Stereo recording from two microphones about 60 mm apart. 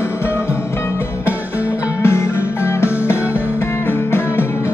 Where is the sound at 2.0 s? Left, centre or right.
Left.